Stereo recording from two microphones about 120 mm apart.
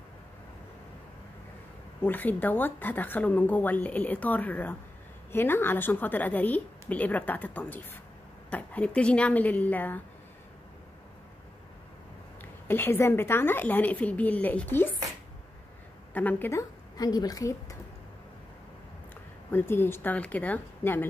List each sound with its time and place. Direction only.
2.0 s a woman's voice: 15° left (ahead or behind)
12.6 s a woman's voice: 20° left (ahead or behind)
16.1 s a woman's voice: 15° left (ahead or behind)
16.9 s a woman's voice: 35° left (ahead or behind)
19.5 s a woman's voice: 20° left (ahead or behind)